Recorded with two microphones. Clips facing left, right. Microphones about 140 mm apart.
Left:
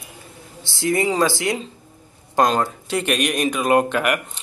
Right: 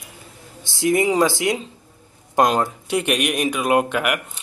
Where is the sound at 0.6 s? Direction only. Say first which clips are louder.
Right 2 dB; 20° right (ahead or behind).